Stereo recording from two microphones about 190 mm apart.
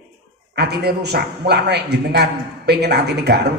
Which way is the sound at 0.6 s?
60° right (ahead or behind).